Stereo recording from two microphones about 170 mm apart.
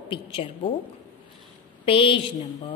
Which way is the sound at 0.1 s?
30° left (ahead or behind).